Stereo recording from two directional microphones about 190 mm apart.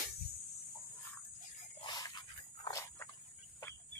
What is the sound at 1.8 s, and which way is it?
Dog, 20° left (ahead or behind).